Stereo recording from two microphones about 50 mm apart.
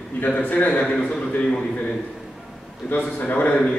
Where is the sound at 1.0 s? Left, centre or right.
Left.